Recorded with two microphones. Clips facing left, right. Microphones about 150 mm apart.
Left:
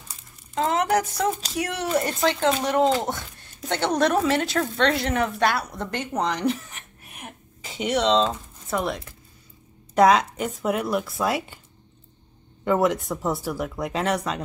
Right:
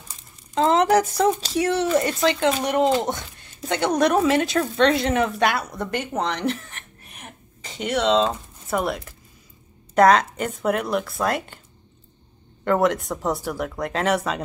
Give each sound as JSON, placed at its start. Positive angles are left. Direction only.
{"t": 0.7, "sound": "speech", "side_deg": -30}
{"t": 2.6, "sound": "a woman's voice", "side_deg": -15}
{"t": 12.6, "sound": "speech", "side_deg": 0}